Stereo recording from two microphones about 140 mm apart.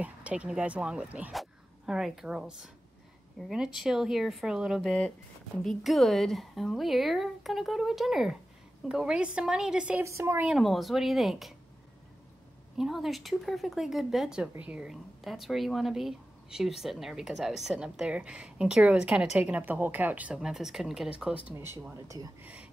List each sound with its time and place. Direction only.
0.0 s a woman's voice: 10° right (ahead or behind)
10.0 s speech: 20° right (ahead or behind)
10.4 s speech: centre (ahead or behind)
12.7 s a woman's voice: centre (ahead or behind)
21.5 s speech: 15° right (ahead or behind)